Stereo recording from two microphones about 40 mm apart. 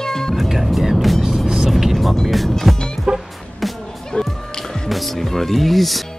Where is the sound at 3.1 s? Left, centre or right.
Right.